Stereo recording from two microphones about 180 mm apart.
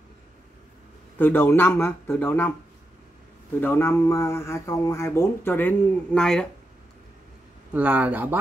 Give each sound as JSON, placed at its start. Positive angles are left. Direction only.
{"t": 1.1, "sound": "speech", "side_deg": 10}
{"t": 3.6, "sound": "speech", "side_deg": 15}
{"t": 7.7, "sound": "speech", "side_deg": -10}